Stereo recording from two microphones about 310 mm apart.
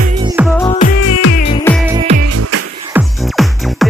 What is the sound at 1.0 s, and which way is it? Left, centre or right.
Music, left.